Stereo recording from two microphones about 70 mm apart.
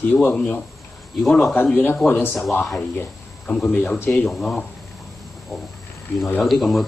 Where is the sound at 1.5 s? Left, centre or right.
Left.